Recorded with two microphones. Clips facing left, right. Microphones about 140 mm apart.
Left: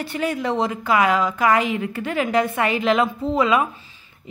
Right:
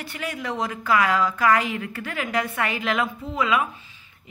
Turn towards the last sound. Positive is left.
turn(degrees=30)  # may be behind; listen again after turning